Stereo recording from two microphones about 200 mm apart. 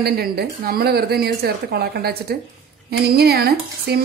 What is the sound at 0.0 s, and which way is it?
Speech, 50° right (ahead or behind).